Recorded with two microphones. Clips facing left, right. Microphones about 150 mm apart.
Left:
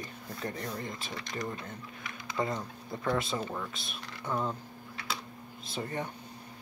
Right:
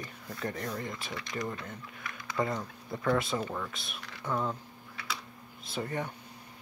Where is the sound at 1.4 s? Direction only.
25° left (ahead or behind).